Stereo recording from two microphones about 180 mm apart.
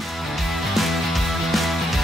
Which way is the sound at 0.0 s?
Centre (ahead or behind).